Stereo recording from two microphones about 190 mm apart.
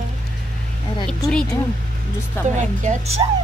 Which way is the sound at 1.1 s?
5° left (ahead or behind).